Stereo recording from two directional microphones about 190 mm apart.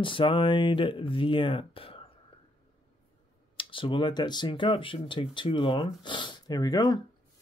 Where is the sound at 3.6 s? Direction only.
25° left (ahead or behind).